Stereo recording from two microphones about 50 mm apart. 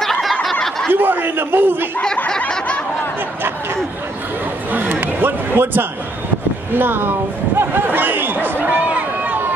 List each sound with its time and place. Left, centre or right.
0.0 s snicker: centre
0.9 s a man's voice: right
5.0 s speech: right
6.7 s a sound: right